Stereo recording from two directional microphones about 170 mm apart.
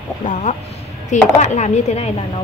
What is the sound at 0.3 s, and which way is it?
Speech, 45° left (ahead or behind).